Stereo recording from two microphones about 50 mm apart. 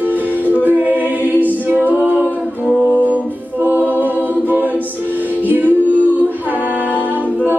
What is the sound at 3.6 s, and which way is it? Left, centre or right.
A capella, right.